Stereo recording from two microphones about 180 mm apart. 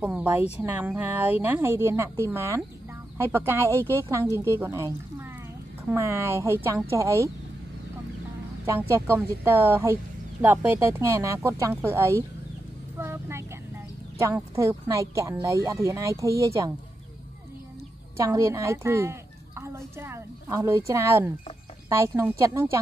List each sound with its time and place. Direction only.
0.0 s speech: 5° right (ahead or behind)
8.6 s speech: 15° right (ahead or behind)
13.0 s vehicle: 15° right (ahead or behind)
14.1 s speech: 15° right (ahead or behind)
18.1 s a woman's voice: 15° right (ahead or behind)